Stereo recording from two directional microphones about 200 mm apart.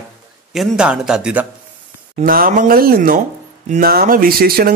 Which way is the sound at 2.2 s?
45° right (ahead or behind).